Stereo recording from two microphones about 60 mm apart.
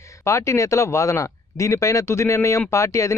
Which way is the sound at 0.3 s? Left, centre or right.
Left.